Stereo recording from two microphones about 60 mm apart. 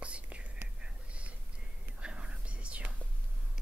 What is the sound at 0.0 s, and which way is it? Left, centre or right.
Whispering, centre.